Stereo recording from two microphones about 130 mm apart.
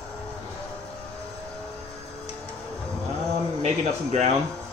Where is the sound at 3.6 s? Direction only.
60° right (ahead or behind).